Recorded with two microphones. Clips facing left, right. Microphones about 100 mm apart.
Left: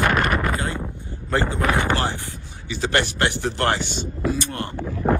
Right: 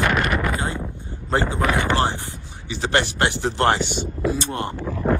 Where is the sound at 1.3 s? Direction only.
15° right (ahead or behind).